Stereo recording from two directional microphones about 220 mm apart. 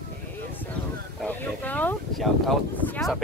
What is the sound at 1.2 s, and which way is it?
Speech, 10° left (ahead or behind).